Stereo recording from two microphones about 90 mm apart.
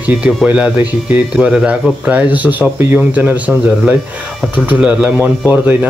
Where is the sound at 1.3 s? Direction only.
10° right (ahead or behind).